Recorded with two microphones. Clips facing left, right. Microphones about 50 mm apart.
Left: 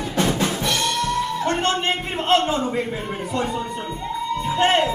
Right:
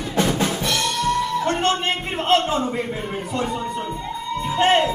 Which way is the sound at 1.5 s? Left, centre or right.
Centre.